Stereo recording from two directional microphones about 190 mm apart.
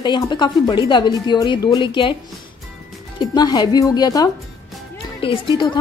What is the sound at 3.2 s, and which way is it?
A woman's voice, 20° left (ahead or behind).